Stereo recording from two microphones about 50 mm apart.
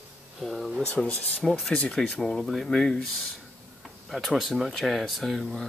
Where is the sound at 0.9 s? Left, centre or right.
Centre.